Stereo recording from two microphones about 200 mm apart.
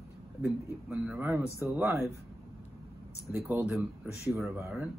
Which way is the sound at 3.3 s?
10° right (ahead or behind).